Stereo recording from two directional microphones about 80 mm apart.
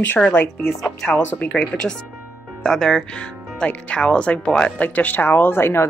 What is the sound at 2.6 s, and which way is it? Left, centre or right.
Speech, centre.